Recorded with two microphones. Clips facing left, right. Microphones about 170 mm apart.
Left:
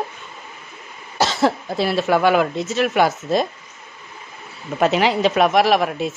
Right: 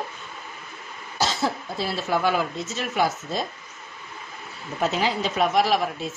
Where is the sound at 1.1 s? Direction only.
75° left (ahead or behind).